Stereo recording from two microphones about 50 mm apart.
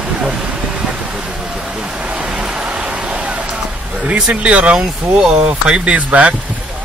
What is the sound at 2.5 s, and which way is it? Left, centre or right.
Vehicle, centre.